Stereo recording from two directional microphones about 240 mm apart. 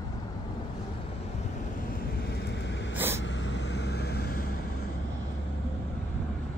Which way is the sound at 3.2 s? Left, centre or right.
Left.